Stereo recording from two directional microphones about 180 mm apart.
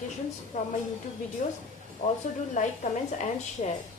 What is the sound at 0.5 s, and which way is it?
A woman's voice, 35° left (ahead or behind).